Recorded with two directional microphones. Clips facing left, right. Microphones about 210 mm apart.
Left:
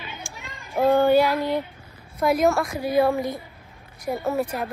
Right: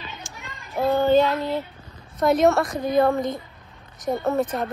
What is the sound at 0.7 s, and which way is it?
Child singing, 15° left (ahead or behind).